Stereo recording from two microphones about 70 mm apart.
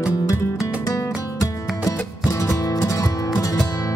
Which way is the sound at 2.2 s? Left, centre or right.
Left.